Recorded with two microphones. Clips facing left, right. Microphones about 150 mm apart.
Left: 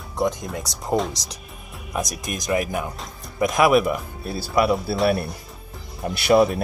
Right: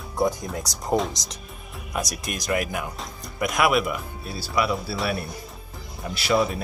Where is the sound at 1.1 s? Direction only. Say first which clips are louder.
Left 1 dB; 30° left (ahead or behind).